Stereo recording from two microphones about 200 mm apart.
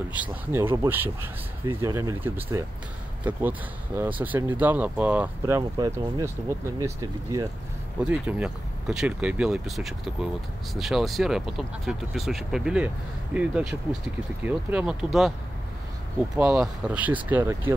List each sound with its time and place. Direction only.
0.1 s speech: 10° right (ahead or behind)
8.0 s speech: 5° right (ahead or behind)
16.3 s speech: 5° right (ahead or behind)